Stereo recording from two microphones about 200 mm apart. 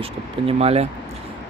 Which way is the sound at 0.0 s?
30° right (ahead or behind).